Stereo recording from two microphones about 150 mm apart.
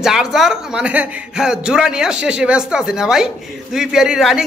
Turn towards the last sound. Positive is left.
turn(degrees=-5)  # may be behind; listen again after turning